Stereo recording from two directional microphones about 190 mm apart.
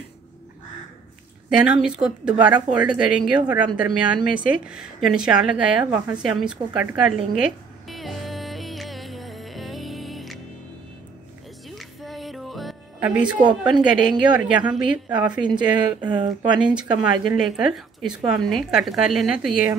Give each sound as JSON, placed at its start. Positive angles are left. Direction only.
{"t": 1.6, "sound": "a woman's voice", "side_deg": -5}
{"t": 7.9, "sound": "music", "side_deg": 0}
{"t": 11.7, "sound": "music", "side_deg": 0}
{"t": 13.4, "sound": "speech", "side_deg": -25}
{"t": 13.8, "sound": "a woman's voice", "side_deg": -5}
{"t": 15.5, "sound": "speech", "side_deg": -25}
{"t": 16.5, "sound": "a woman's voice", "side_deg": -5}